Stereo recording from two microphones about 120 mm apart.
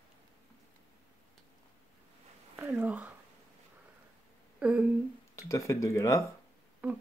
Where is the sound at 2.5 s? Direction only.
15° right (ahead or behind).